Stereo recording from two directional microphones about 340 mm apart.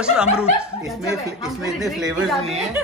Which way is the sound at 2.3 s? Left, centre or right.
Centre.